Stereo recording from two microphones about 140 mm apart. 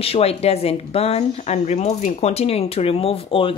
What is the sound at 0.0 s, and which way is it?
Speech, 45° left (ahead or behind).